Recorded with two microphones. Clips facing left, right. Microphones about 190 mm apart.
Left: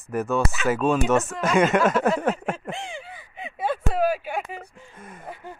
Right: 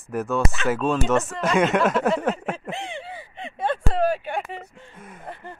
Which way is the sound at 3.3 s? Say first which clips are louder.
Right 1 dB; 5° left (ahead or behind).